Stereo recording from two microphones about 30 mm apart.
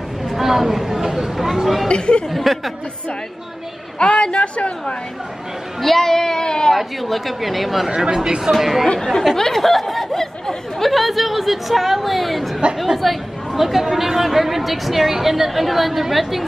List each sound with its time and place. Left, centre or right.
0.2 s speech: centre
1.9 s a woman's voice: left
2.2 s speech: centre
4.0 s a woman's voice: left
5.8 s speech: centre
6.0 s speech: centre
6.7 s speech: centre
8.0 s speech: centre
8.5 s speech: centre
9.6 s a sound: centre
10.1 s chatter: centre
10.9 s a woman's voice: centre